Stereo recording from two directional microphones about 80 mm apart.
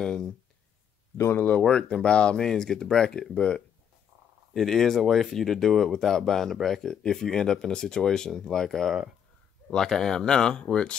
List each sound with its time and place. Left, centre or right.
0.0 s speech: centre
1.1 s speech: left
1.6 s speech: centre